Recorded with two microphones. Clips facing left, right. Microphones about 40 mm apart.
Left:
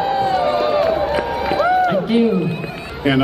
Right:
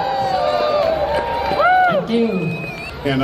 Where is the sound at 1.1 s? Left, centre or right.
Centre.